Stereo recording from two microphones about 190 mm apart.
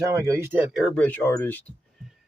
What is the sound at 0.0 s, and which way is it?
Speech, 15° right (ahead or behind).